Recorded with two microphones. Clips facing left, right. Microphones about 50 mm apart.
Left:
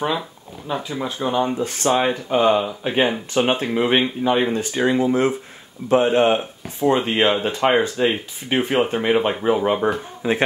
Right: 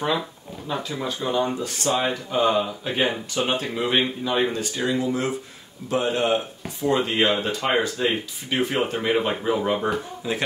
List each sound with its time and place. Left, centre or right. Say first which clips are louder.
0.7 s speech: left 3 dB; centre
10.2 s speech: left 7 dB; left